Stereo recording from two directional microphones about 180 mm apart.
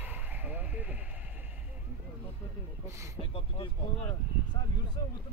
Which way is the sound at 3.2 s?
30° left (ahead or behind).